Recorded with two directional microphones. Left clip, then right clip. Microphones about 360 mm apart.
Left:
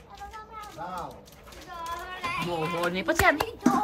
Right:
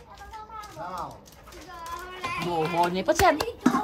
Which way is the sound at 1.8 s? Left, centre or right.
Centre.